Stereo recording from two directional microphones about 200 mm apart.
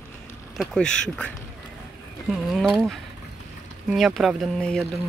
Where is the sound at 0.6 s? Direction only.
5° left (ahead or behind).